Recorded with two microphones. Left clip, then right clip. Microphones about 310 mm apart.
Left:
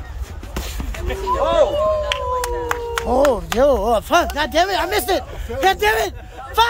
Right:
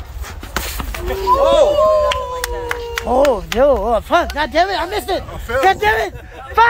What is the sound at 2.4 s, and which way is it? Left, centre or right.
Clapping, left.